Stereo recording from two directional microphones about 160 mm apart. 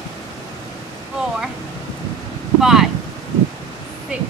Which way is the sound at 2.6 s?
Centre (ahead or behind).